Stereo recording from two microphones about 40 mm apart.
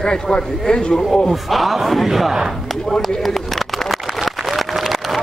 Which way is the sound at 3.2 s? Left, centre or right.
Centre.